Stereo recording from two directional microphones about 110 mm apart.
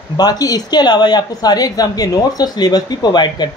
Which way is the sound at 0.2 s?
35° left (ahead or behind).